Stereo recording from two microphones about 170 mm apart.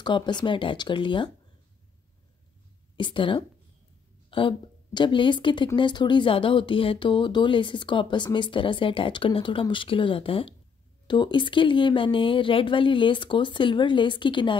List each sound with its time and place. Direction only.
0.0 s speech: 25° left (ahead or behind)
3.0 s speech: 30° left (ahead or behind)